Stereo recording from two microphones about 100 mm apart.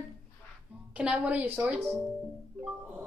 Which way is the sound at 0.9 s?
10° right (ahead or behind).